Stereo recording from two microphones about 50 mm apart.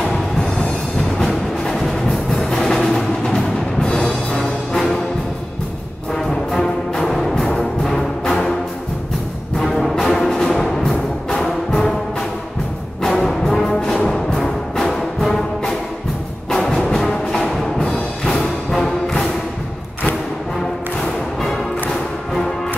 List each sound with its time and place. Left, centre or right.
1.1 s music: centre
6.1 s music: centre
9.6 s music: centre